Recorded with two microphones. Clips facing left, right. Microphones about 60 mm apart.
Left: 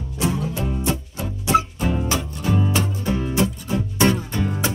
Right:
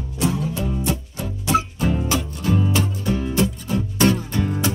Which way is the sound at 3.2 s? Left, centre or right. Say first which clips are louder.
Even; centre.